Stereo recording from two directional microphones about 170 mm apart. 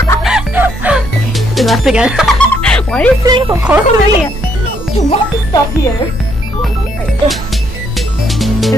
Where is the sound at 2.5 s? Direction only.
5° left (ahead or behind).